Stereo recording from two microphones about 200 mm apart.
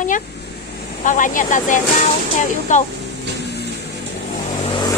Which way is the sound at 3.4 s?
55° left (ahead or behind).